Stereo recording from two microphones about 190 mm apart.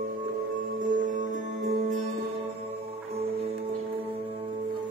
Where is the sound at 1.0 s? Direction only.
40° right (ahead or behind).